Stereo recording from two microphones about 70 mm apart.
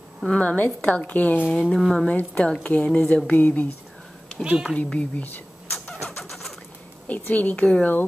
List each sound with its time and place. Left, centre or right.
0.3 s speech: centre
1.7 s speech: centre
2.0 s a woman's voice: centre
4.4 s speech: centre
4.8 s a woman's voice: centre
5.2 s a sound: left
6.0 s bird: centre
7.1 s speech: left